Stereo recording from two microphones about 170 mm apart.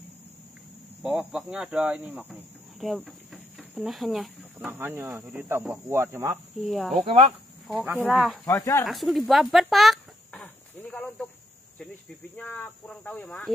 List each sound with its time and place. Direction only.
1.0 s speech: 5° right (ahead or behind)
4.6 s speech: 10° right (ahead or behind)
6.6 s speech: centre (ahead or behind)
7.1 s speech: 35° right (ahead or behind)
8.1 s speech: centre (ahead or behind)
8.5 s speech: 15° left (ahead or behind)
8.8 s chicken: centre (ahead or behind)
12.4 s speech: 10° left (ahead or behind)